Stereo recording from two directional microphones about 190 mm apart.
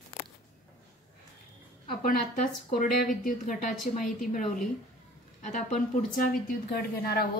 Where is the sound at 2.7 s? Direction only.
45° left (ahead or behind).